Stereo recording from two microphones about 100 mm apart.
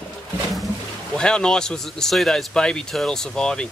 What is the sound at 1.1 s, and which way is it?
Speech, 10° left (ahead or behind).